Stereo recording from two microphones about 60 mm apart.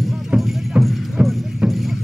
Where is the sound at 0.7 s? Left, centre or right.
Centre.